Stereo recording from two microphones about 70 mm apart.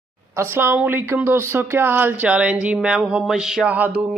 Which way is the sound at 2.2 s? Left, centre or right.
Centre.